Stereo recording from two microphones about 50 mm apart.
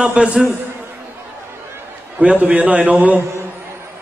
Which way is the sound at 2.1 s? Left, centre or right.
Right.